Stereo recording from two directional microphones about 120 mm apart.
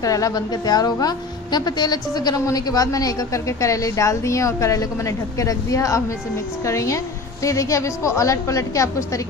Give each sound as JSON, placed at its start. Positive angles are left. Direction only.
{"t": 0.0, "sound": "a woman's voice", "side_deg": 30}